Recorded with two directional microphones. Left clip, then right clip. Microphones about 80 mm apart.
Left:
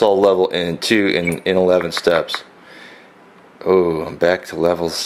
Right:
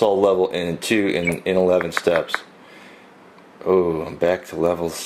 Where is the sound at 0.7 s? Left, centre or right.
Centre.